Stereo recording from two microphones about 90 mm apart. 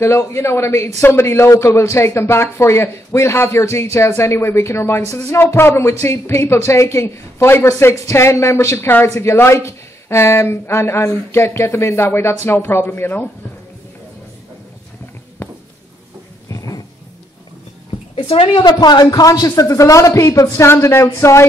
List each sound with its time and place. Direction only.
0.0 s speech: 30° left (ahead or behind)
16.4 s a sound: 40° left (ahead or behind)
18.1 s a woman's voice: 85° left
18.6 s a man's voice: 50° left (ahead or behind); by 21.5 s 30° left (ahead or behind)